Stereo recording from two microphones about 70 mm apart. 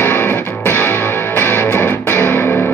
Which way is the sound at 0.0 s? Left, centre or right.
Left.